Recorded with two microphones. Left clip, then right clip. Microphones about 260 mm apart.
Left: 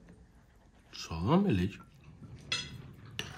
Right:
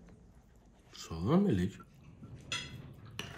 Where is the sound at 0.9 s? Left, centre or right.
Left.